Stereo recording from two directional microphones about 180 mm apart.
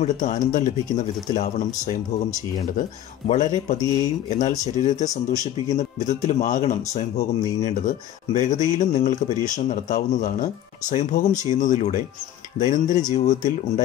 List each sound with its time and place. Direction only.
0.0 s speech: 45° left (ahead or behind)
3.3 s speech: 40° left (ahead or behind)